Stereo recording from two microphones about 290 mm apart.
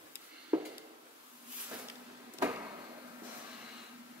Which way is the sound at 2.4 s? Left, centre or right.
Centre.